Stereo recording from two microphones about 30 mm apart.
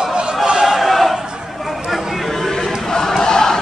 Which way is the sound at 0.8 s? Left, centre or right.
Centre.